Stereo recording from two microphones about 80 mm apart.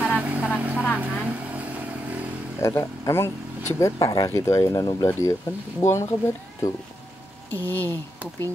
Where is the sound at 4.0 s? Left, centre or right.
Left.